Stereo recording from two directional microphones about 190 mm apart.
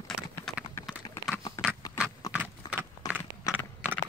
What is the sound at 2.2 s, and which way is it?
Horse, 20° left (ahead or behind).